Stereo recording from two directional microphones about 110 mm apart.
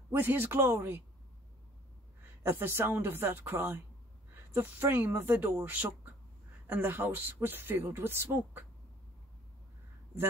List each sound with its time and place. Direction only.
0.1 s speech: 20° right (ahead or behind)
2.4 s speech: 20° right (ahead or behind)